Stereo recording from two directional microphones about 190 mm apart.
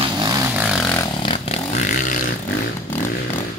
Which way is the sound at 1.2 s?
30° left (ahead or behind).